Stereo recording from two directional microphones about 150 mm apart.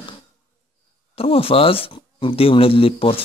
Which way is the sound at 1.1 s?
40° left (ahead or behind).